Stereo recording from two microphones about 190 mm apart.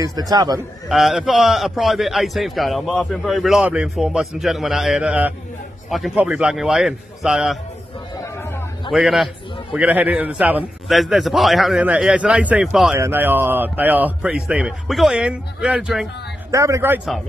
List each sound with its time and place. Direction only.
0.0 s a man's voice: 20° right (ahead or behind)
0.8 s a man's voice: centre (ahead or behind)
8.4 s a sound: 10° left (ahead or behind)
8.9 s a man's voice: centre (ahead or behind)
16.4 s a man's voice: 15° right (ahead or behind)